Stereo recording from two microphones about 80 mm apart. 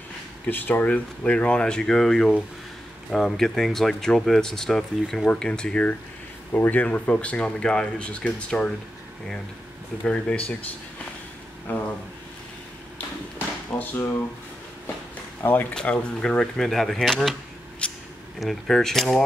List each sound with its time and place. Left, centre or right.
0.5 s speech: left
10.0 s speech: centre
11.7 s speech: left
13.7 s speech: left
15.7 s speech: centre
17.8 s a sound: centre
18.4 s speech: centre